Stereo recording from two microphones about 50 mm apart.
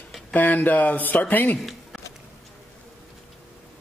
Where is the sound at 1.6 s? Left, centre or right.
Centre.